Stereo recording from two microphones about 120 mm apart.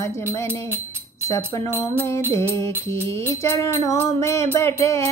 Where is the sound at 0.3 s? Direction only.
25° left (ahead or behind).